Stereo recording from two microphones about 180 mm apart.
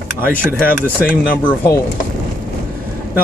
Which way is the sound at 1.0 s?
55° left (ahead or behind).